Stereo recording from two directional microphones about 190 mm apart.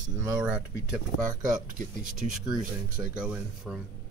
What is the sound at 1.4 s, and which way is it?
Speech, 45° right (ahead or behind).